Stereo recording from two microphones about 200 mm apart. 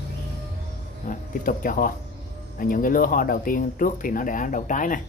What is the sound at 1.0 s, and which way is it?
Speech, 45° left (ahead or behind).